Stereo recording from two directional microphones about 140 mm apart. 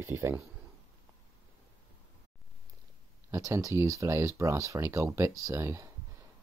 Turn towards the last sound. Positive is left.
turn(degrees=-20)  # may be behind; listen again after turning